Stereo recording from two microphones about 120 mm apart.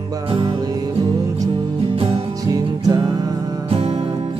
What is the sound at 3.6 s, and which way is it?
Music, 50° right (ahead or behind).